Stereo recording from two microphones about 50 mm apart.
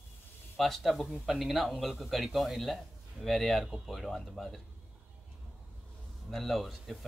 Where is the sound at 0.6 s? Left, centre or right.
Centre.